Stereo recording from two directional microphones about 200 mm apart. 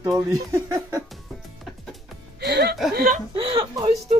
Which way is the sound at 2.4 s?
55° right (ahead or behind).